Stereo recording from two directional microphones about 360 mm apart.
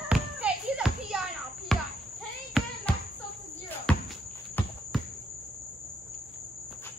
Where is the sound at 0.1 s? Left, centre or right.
Centre.